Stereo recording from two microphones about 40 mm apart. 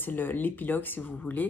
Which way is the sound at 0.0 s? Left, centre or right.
Left.